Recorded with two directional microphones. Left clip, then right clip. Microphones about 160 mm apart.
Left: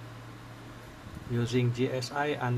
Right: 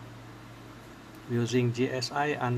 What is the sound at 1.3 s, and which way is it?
Speech, 15° right (ahead or behind).